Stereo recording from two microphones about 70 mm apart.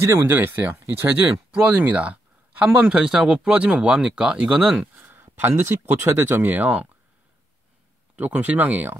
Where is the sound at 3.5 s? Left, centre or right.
Centre.